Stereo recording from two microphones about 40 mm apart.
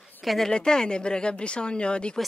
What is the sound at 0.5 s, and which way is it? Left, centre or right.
Speech, centre.